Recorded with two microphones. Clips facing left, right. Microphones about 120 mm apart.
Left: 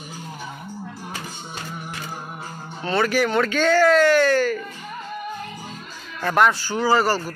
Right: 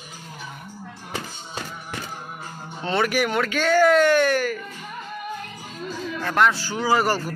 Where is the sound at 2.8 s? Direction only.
20° right (ahead or behind).